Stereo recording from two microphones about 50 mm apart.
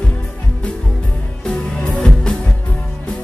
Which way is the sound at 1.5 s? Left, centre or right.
Centre.